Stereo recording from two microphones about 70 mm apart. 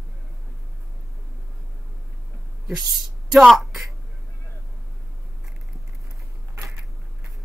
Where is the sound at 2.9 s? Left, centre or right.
Centre.